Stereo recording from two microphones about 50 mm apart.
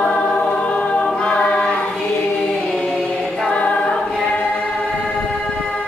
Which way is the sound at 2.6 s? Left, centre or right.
Centre.